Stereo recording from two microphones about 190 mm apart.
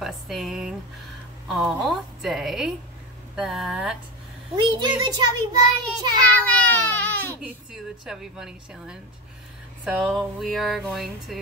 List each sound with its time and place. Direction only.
0.0 s a sound: centre (ahead or behind)
1.5 s a woman's voice: centre (ahead or behind)
4.6 s a child's voice: 25° right (ahead or behind)
6.3 s baby cry: 10° left (ahead or behind)
7.4 s a woman's voice: 5° right (ahead or behind)